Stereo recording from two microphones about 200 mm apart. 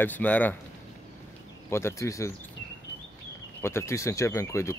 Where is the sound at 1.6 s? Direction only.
15° left (ahead or behind).